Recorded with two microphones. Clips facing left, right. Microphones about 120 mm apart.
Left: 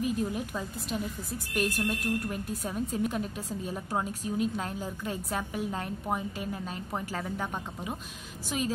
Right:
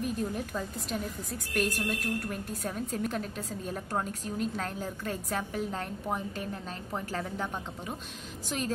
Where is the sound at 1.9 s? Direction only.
10° left (ahead or behind).